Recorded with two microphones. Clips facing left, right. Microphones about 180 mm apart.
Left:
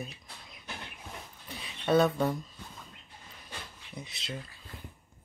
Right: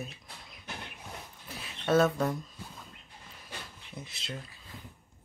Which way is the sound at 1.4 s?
Centre (ahead or behind).